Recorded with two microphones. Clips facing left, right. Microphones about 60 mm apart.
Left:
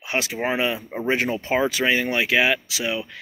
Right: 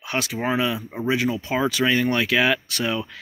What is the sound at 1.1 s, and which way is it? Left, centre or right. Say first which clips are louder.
Speech: even; left.